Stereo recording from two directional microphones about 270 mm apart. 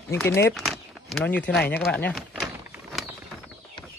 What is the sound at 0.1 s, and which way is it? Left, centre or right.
Speech, centre.